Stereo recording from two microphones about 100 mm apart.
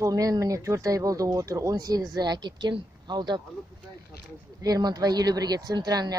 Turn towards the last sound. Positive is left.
turn(degrees=-45)  # may be behind; listen again after turning